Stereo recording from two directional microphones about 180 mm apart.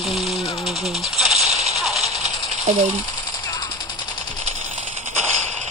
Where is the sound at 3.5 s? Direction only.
25° left (ahead or behind).